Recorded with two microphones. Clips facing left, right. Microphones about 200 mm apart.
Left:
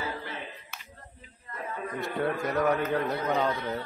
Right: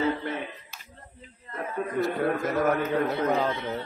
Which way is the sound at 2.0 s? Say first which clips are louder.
Right 4 dB; centre (ahead or behind).